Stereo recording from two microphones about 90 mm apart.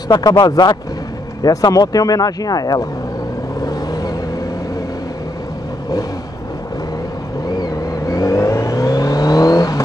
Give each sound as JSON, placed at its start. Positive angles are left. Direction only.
{"t": 0.1, "sound": "speech", "side_deg": 50}
{"t": 3.6, "sound": "vehicle", "side_deg": 45}
{"t": 7.4, "sound": "vehicle", "side_deg": 45}